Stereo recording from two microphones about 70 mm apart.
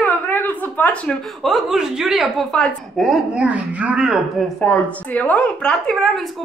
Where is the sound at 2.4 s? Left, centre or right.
Centre.